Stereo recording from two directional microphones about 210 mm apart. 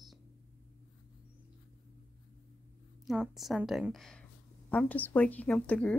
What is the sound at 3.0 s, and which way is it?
Speech, centre (ahead or behind).